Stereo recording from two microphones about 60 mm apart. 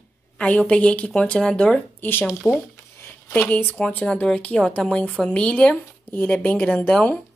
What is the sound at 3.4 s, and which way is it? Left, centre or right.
Speech, left.